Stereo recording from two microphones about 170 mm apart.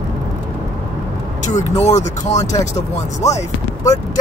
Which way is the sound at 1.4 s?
45° left (ahead or behind).